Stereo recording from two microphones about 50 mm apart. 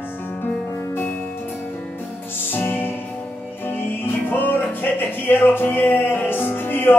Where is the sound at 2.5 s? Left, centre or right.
Left.